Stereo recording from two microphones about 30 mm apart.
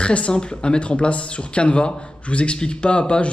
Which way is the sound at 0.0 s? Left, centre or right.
Left.